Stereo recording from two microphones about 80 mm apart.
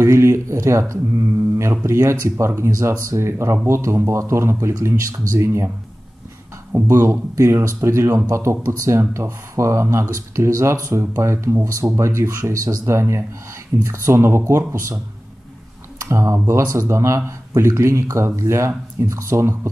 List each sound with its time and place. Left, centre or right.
0.0 s speech: right
6.7 s speech: right
16.0 s speech: right